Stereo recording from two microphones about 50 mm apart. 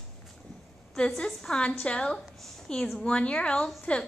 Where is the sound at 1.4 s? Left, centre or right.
Centre.